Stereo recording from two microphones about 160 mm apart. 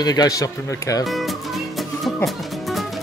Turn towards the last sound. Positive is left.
turn(degrees=0)  # may be behind; listen again after turning